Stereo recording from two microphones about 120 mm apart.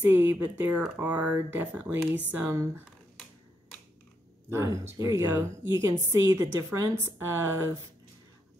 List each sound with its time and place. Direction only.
0.0 s a woman's voice: 15° right (ahead or behind)
4.5 s a woman's voice: 25° right (ahead or behind)